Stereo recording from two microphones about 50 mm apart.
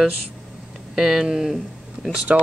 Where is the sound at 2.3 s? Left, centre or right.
Right.